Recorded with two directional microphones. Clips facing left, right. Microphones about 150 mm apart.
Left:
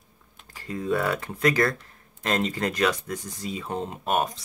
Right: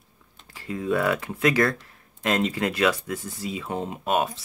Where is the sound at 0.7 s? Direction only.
Centre (ahead or behind).